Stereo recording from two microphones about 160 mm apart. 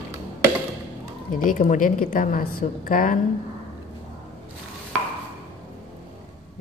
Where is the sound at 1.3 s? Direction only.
60° left (ahead or behind).